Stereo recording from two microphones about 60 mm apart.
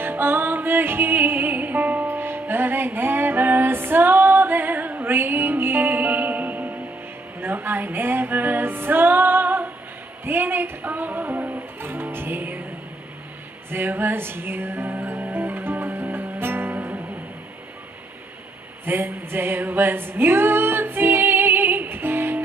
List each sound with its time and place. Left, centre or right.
0.0 s music: right
13.7 s music: right
18.9 s music: right